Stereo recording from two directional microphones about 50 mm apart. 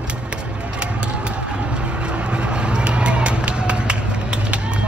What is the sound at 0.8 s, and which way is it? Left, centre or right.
Vehicle, right.